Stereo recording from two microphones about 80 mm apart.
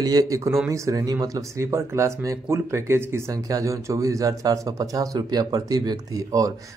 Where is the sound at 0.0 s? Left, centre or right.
Right.